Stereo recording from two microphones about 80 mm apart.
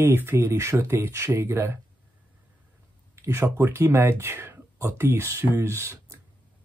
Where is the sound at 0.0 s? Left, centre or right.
Right.